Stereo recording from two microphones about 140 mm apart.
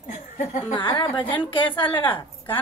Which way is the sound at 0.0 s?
60° left (ahead or behind).